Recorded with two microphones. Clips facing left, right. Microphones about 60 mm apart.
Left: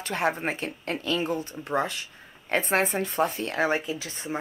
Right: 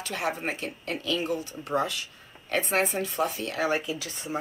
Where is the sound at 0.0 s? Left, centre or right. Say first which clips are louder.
Left 3 dB; left.